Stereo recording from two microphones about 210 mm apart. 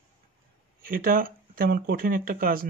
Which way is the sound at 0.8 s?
45° right (ahead or behind).